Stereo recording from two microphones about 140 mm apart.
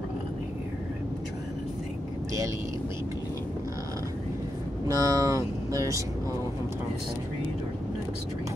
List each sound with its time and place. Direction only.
4.8 s vehicle: 25° right (ahead or behind)